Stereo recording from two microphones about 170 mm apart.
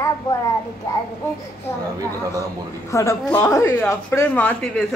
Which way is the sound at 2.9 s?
15° left (ahead or behind).